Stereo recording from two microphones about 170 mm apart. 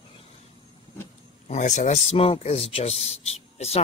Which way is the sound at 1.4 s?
45° left (ahead or behind).